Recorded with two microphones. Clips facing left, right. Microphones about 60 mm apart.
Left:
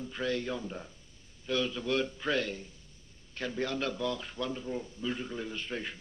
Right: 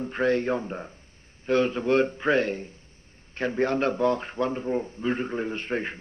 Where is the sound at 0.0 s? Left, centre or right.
Right.